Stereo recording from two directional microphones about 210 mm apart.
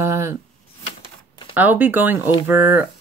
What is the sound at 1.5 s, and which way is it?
Speech, 10° right (ahead or behind).